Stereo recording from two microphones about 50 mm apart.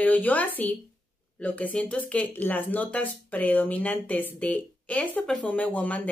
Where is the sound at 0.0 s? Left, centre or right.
Left.